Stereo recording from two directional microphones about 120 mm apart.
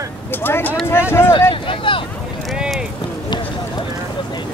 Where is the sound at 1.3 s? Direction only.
50° left (ahead or behind).